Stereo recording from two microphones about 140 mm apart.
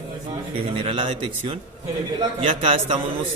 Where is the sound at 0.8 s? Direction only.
45° right (ahead or behind).